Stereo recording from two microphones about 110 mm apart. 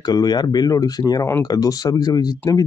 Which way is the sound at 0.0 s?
40° left (ahead or behind).